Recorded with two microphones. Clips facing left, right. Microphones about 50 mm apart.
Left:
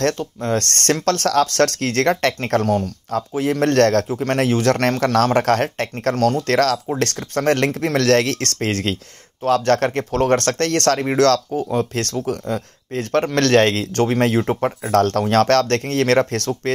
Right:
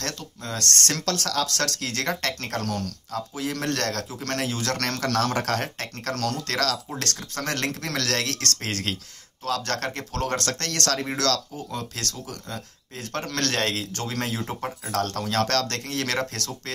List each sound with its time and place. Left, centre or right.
0.0 s speech: left
2.6 s speech: centre
3.1 s speech: left